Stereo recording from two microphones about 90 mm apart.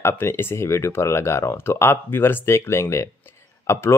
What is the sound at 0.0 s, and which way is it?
Speech, 25° left (ahead or behind).